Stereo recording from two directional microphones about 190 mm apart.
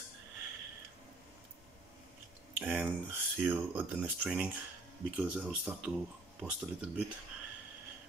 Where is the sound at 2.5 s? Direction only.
10° right (ahead or behind).